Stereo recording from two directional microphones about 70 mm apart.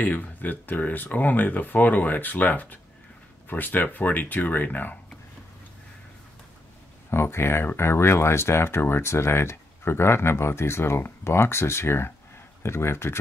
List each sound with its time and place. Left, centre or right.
0.0 s speech: left
7.1 s speech: left